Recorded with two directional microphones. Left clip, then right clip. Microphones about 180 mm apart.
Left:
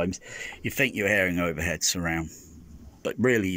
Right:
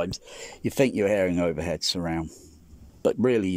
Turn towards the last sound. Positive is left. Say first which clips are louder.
# right 2 dB
turn(degrees=-10)  # may be behind; listen again after turning